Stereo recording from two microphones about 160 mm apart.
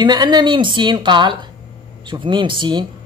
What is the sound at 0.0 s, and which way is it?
Speech, 25° right (ahead or behind).